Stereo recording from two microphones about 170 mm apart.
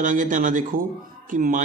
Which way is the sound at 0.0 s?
50° right (ahead or behind).